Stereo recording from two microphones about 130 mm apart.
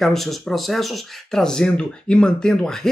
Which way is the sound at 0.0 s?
Centre (ahead or behind).